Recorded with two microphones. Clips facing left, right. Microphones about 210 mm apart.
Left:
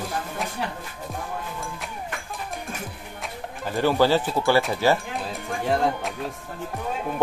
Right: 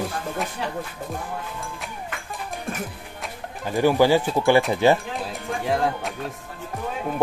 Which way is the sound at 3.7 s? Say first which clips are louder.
Right 2 dB; 15° right (ahead or behind).